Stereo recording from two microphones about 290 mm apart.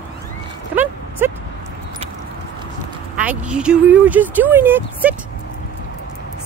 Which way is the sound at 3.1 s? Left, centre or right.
Centre.